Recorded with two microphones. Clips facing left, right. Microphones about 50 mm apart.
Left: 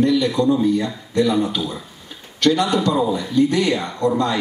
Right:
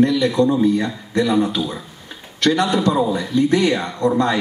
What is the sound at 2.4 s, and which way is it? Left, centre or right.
A man's voice, right.